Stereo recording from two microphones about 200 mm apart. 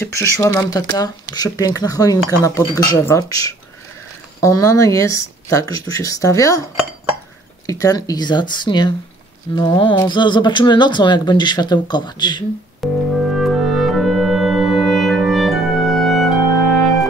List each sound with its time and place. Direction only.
0.0 s speech: 15° left (ahead or behind)
7.6 s speech: 15° left (ahead or behind)
12.8 s music: centre (ahead or behind)